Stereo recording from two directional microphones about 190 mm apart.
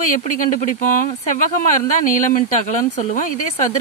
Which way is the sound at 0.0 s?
45° left (ahead or behind).